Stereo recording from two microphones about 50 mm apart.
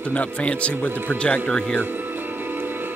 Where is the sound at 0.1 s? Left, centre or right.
Left.